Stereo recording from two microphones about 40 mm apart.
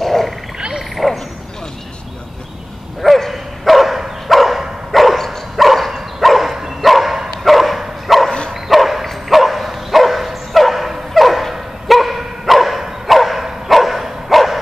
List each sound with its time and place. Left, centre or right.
0.0 s frog: centre
0.6 s frog: right
0.9 s a sound: centre
3.0 s dog: centre
11.9 s bow-wow: centre